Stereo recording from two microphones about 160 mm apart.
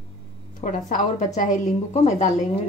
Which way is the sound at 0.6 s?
55° left (ahead or behind).